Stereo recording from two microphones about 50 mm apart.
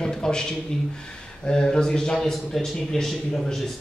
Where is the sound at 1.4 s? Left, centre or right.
Centre.